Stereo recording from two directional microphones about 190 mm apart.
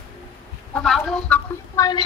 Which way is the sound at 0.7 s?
Centre (ahead or behind).